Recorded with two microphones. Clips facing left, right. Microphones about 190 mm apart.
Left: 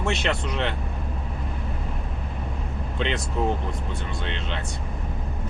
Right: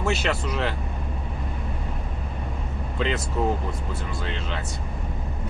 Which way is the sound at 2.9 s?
Centre (ahead or behind).